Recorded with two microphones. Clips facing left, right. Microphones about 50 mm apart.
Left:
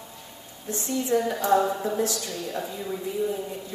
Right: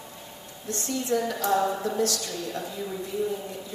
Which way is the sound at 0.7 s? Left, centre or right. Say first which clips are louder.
Left 2 dB; centre.